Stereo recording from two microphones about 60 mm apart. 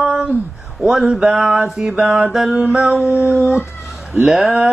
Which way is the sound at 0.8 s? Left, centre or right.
Centre.